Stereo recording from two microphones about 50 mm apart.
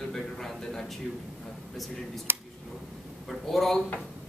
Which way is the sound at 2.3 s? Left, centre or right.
Right.